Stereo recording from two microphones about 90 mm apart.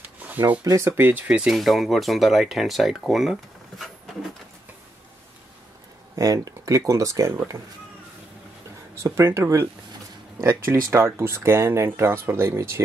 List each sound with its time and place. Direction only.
0.0 s a sound: 20° right (ahead or behind)
0.7 s speech: 30° right (ahead or behind); by 1.5 s 15° right (ahead or behind)
1.5 s speech: centre (ahead or behind)
6.1 s speech: 40° right (ahead or behind)
8.9 s speech: 35° right (ahead or behind)